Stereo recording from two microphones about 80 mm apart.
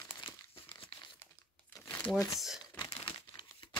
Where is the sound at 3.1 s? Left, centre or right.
Left.